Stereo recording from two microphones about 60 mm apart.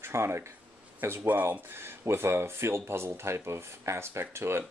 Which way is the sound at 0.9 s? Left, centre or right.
Right.